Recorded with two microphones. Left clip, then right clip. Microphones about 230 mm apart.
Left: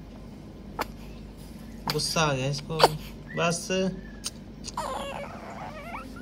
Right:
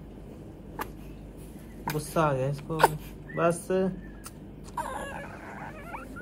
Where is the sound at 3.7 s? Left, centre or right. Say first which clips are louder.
Even; centre.